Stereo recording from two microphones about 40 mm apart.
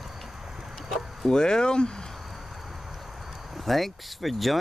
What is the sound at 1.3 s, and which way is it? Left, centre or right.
Speech, centre.